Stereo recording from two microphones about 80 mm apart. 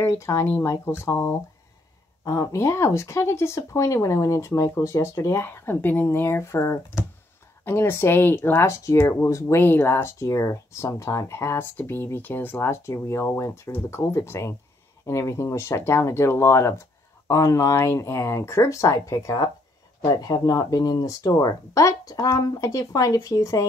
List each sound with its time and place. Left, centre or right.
0.0 s speech: left
9.7 s speech: left
10.0 s speech: left